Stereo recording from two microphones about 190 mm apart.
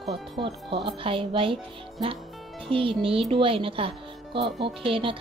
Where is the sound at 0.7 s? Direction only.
25° right (ahead or behind).